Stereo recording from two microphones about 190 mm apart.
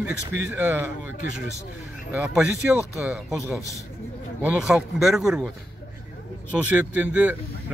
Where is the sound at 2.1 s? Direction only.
5° right (ahead or behind).